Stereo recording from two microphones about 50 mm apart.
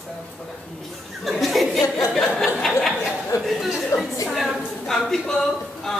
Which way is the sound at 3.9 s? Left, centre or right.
Left.